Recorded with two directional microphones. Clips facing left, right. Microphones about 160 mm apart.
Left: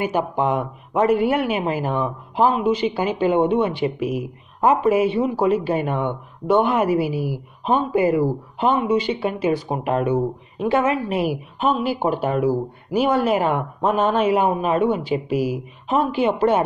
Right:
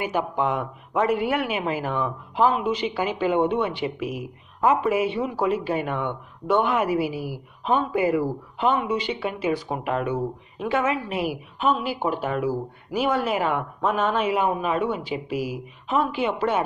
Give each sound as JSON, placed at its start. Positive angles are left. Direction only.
{"t": 0.0, "sound": "speech", "side_deg": 35}